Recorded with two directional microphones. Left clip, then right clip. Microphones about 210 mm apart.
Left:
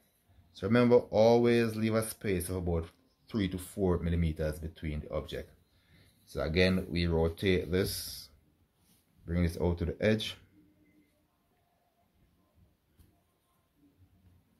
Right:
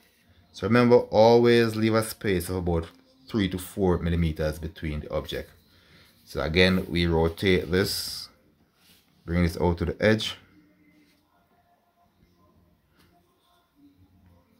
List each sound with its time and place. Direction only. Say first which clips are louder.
0.5 s speech: right 6 dB; 10° right (ahead or behind)